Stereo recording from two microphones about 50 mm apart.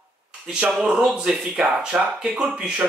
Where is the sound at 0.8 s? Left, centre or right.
Centre.